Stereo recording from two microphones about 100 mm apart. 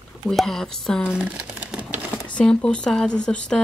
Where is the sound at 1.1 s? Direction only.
15° right (ahead or behind).